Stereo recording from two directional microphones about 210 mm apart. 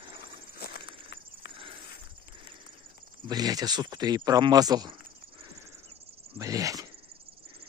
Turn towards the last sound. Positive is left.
turn(degrees=-15)  # may be behind; listen again after turning